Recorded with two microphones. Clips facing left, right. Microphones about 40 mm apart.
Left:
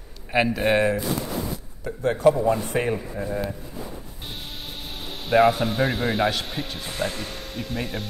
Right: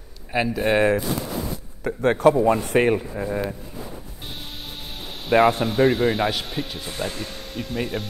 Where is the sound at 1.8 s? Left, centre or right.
Right.